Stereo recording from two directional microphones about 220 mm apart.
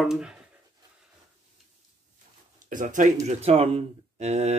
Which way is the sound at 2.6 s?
35° right (ahead or behind).